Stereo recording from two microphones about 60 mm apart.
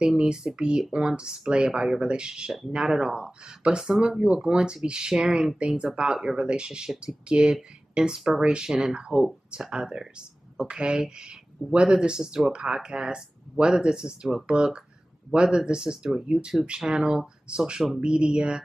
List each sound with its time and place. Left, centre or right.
0.0 s speech: centre